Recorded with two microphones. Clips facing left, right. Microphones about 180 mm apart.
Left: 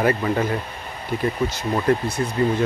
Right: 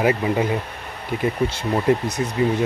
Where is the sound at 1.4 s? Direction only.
25° right (ahead or behind).